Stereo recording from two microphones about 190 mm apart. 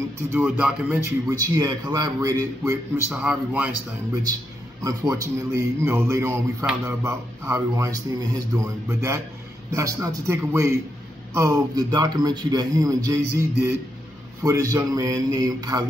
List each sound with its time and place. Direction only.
0.3 s speech: 10° right (ahead or behind)
3.1 s speech: 5° right (ahead or behind)
4.8 s speech: 15° right (ahead or behind)